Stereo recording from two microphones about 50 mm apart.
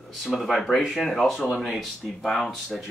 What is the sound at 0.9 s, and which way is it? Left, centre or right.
Speech, centre.